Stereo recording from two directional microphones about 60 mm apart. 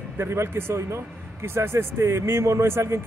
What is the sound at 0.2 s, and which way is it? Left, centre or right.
Speech, right.